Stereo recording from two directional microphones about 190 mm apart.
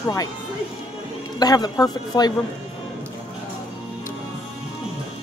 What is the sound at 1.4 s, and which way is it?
Speech, 20° left (ahead or behind).